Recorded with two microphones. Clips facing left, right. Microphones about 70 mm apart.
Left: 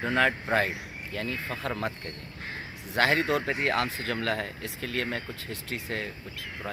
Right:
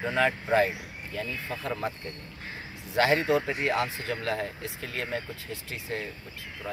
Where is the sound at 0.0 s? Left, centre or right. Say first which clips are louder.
Left 1 dB; left.